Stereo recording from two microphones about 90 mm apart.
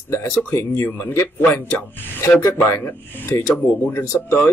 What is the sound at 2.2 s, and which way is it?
Speech, 35° left (ahead or behind).